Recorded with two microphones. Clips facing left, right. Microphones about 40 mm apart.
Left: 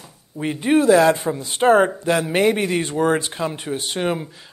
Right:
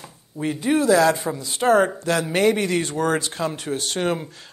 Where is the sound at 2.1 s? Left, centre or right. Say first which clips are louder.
Left 2 dB; centre.